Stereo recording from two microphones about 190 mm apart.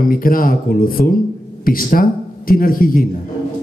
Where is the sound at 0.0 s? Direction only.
45° left (ahead or behind).